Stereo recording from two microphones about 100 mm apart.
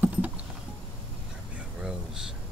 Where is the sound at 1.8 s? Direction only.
5° right (ahead or behind).